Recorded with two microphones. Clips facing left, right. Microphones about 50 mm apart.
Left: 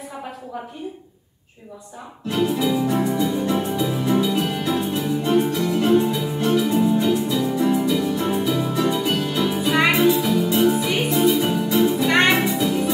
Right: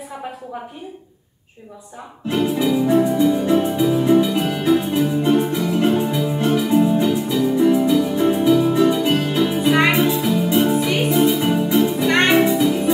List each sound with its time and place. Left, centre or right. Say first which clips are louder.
2.3 s music: right 2 dB; centre
4.2 s music: right 3 dB; centre
9.0 s music: right 4 dB; right
9.3 s music: right 4 dB; centre
10.4 s music: right 2 dB; right
10.7 s music: right 3 dB; centre